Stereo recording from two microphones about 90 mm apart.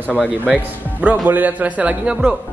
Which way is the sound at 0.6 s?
15° right (ahead or behind).